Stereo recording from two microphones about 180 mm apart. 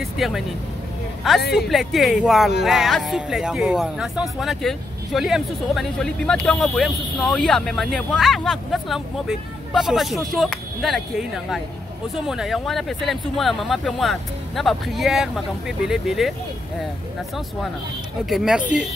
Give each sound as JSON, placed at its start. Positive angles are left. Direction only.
{"t": 0.0, "sound": "speech", "side_deg": 0}
{"t": 1.4, "sound": "speech", "side_deg": 65}
{"t": 1.7, "sound": "speech", "side_deg": 0}
{"t": 18.3, "sound": "speech", "side_deg": -5}